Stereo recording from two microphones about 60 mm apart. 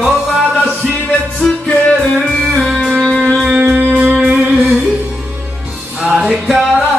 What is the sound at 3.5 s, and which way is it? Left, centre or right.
Music, right.